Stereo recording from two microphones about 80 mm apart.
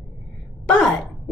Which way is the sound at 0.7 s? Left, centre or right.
Centre.